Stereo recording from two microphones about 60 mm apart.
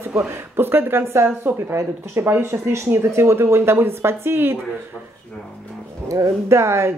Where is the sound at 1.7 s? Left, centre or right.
Right.